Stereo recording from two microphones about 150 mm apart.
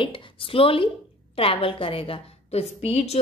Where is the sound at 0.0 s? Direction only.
35° left (ahead or behind).